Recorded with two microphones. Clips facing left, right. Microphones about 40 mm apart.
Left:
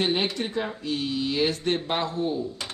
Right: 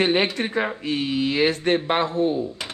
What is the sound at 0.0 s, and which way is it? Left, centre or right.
Speech, right.